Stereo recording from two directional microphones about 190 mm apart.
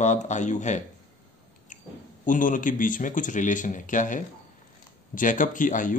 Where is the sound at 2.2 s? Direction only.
45° left (ahead or behind).